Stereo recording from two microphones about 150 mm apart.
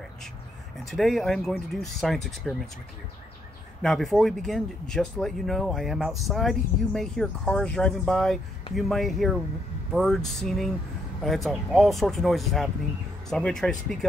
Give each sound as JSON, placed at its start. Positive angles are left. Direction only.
{"t": 0.8, "sound": "speech", "side_deg": 0}
{"t": 3.8, "sound": "speech", "side_deg": 0}